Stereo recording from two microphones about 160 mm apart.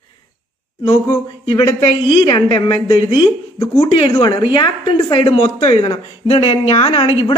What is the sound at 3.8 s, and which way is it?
A woman's voice, 30° left (ahead or behind).